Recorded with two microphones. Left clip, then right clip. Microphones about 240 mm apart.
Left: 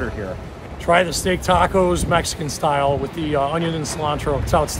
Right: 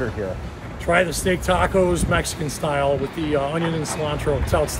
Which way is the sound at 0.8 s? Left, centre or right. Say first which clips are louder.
Left 2 dB; centre.